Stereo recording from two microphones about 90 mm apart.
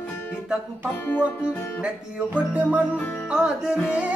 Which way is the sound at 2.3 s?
15° right (ahead or behind).